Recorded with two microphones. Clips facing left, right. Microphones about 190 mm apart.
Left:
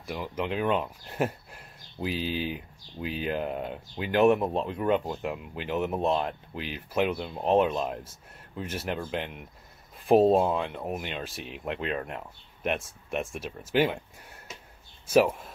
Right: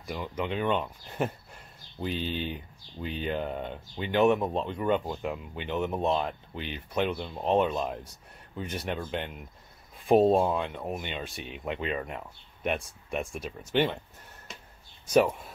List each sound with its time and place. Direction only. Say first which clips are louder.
0.0 s speech: left 1 dB; centre (ahead or behind)